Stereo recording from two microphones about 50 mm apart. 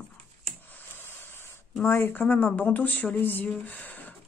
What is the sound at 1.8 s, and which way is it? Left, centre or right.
Speech, left.